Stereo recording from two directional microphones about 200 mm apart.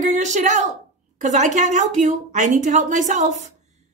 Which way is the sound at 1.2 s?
35° right (ahead or behind).